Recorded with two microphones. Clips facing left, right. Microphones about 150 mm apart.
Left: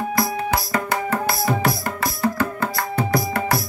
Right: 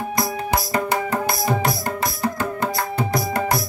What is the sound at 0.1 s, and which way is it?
Music, 15° right (ahead or behind).